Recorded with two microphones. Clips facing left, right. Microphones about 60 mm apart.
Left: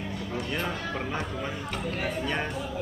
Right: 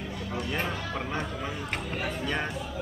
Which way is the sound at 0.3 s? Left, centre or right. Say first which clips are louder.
Even; centre.